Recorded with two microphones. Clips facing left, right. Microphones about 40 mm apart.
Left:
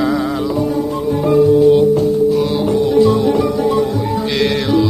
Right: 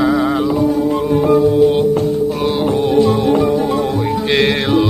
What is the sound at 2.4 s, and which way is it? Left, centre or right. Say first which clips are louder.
Music: even; right.